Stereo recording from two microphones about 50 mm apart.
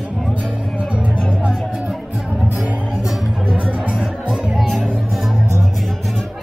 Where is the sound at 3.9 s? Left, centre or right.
Centre.